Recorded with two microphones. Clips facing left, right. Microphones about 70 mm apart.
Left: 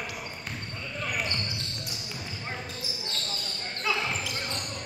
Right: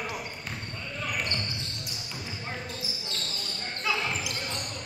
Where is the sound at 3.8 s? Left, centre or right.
Centre.